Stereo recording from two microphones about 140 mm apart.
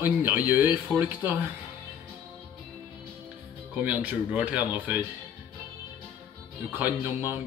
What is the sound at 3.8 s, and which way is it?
Speech, 10° right (ahead or behind).